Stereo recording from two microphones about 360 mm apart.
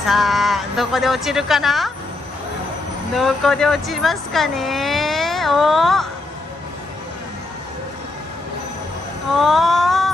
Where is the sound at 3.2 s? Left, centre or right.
Centre.